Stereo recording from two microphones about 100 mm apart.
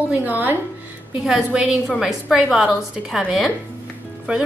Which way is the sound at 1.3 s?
5° right (ahead or behind).